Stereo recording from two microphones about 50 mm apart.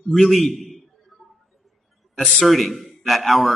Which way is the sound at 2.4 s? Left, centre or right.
Centre.